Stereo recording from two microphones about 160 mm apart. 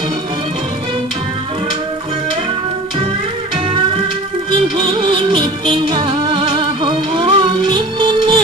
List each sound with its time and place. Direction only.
4.7 s music: 30° right (ahead or behind)